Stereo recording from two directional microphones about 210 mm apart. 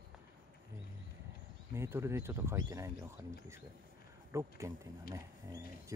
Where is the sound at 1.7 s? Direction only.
10° right (ahead or behind).